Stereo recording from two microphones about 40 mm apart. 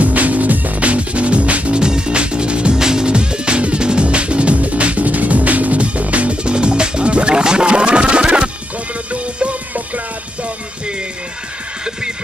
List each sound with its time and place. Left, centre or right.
0.0 s music: right
1.8 s music: right